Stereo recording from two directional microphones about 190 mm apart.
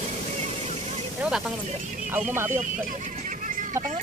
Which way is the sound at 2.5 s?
40° right (ahead or behind).